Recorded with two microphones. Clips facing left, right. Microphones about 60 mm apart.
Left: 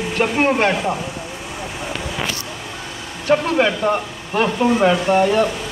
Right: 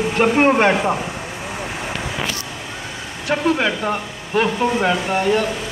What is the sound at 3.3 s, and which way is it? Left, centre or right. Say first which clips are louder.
Speech: left 2 dB; centre.